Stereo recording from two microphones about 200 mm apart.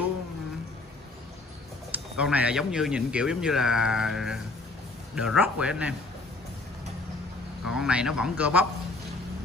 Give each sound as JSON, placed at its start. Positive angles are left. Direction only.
{"t": 1.9, "sound": "a man's voice", "side_deg": -5}
{"t": 7.6, "sound": "speech", "side_deg": -5}